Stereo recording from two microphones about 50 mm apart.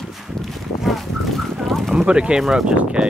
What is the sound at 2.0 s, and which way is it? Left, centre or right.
Speech, right.